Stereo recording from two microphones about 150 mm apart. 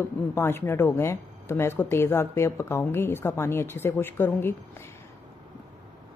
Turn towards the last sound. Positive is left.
turn(degrees=15)  # may be behind; listen again after turning